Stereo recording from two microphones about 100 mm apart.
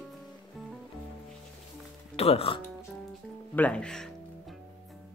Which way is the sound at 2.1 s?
85° left.